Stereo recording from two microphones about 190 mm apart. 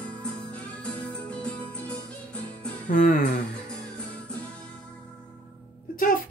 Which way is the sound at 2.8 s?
45° left (ahead or behind).